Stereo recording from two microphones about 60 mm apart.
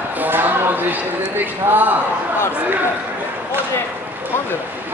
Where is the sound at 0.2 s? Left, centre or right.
Right.